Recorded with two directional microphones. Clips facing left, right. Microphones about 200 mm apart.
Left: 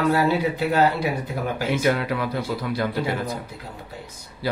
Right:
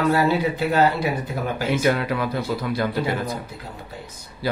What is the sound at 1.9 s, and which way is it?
Speech, 45° right (ahead or behind).